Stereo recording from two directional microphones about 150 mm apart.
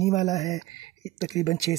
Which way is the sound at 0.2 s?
25° left (ahead or behind).